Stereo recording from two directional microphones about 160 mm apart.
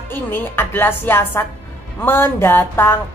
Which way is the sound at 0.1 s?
10° left (ahead or behind).